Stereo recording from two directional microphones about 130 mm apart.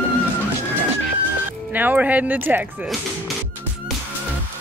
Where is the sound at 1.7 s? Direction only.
10° right (ahead or behind).